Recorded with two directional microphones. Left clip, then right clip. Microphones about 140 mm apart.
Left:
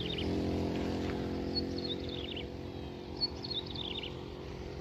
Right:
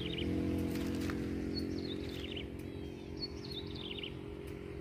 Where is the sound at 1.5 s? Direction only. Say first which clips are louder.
Left 4 dB; 50° left (ahead or behind).